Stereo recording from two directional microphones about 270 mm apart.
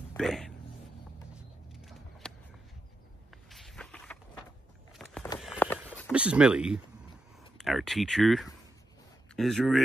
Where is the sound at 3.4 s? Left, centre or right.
Centre.